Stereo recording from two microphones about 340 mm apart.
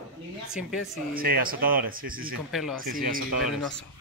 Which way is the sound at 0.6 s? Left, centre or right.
Centre.